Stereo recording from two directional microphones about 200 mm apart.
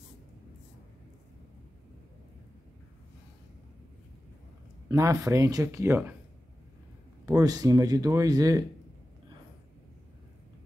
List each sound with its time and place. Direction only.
4.8 s speech: 15° right (ahead or behind)
7.2 s speech: 20° right (ahead or behind)